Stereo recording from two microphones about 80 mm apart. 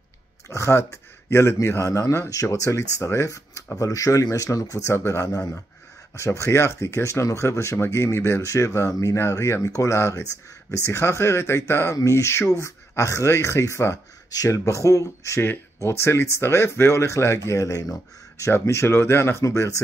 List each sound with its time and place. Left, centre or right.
0.5 s speech: left
5.2 s speech: left
6.1 s speech: left
11.9 s speech: left
15.4 s speech: left